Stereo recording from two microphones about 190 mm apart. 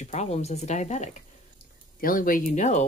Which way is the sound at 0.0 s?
35° left (ahead or behind).